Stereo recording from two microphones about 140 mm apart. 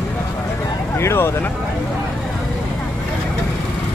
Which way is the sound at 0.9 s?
20° left (ahead or behind).